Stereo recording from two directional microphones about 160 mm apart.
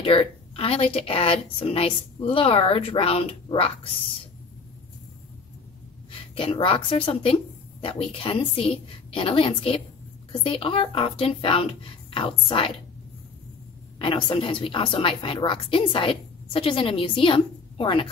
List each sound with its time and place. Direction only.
0.0 s a woman's voice: 35° left (ahead or behind)
6.3 s a woman's voice: 35° left (ahead or behind)
13.9 s a woman's voice: 35° left (ahead or behind)